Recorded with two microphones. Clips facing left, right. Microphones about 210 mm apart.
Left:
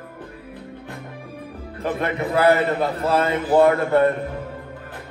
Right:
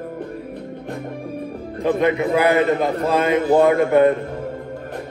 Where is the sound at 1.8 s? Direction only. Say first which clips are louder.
Right 6 dB; 15° right (ahead or behind).